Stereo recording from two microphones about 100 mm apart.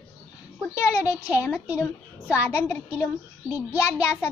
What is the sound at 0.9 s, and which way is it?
Speech, 25° left (ahead or behind).